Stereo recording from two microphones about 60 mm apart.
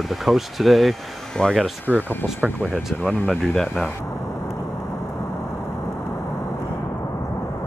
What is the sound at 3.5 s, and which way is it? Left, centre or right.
Speech, centre.